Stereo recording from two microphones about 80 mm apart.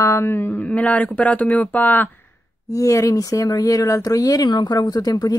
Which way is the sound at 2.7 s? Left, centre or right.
Left.